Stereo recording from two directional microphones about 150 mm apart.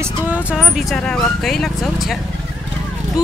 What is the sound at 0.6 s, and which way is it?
Speech, centre (ahead or behind).